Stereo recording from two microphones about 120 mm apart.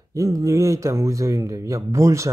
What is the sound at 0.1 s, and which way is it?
Speech, 25° right (ahead or behind).